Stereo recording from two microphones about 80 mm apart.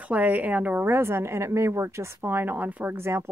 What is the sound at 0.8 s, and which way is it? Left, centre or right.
A woman's voice, right.